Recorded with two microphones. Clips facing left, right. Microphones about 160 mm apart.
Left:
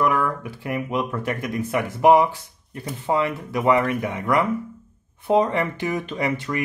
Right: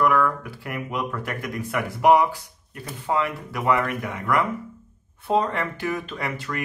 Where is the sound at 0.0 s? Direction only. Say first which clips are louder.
Right 1 dB; 20° left (ahead or behind).